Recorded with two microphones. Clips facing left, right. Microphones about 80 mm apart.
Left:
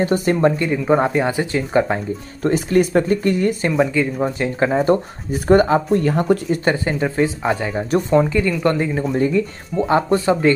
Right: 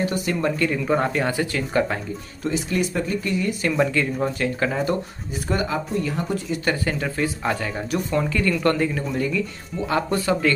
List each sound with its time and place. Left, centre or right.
0.0 s speech: left
0.7 s speech: centre
2.4 s speech: left
3.7 s speech: centre; by 6.6 s left
6.6 s speech: left
9.1 s speech: left